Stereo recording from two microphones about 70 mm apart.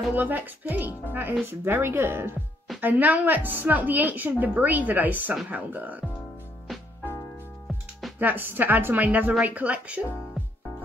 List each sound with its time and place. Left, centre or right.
0.1 s a woman's voice: right
6.7 s music: centre
8.2 s a woman's voice: right
10.4 s music: centre